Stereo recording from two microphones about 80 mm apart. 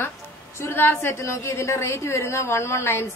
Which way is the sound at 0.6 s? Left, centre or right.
Left.